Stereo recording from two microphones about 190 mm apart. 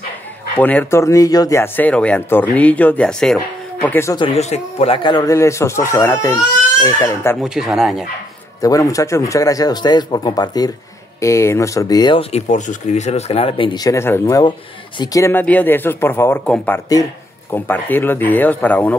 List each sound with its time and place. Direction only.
0.6 s speech: 10° left (ahead or behind)
4.2 s speech: 35° left (ahead or behind); by 7.3 s 15° left (ahead or behind)
7.4 s speech: centre (ahead or behind)
8.5 s speech: 20° left (ahead or behind)